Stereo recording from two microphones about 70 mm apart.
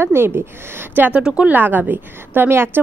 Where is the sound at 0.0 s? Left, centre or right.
Right.